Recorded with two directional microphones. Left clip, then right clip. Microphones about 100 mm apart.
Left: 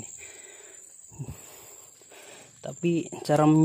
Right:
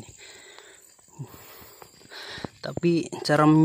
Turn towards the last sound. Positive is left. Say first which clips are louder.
# right 2 dB
turn(degrees=0)  # may be behind; listen again after turning